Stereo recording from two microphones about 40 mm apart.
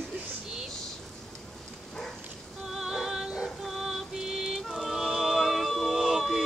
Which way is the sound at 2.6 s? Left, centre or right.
Centre.